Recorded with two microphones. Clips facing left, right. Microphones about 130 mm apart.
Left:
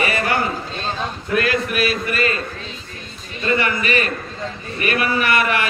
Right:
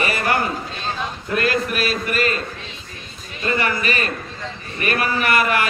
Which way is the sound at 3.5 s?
35° right (ahead or behind).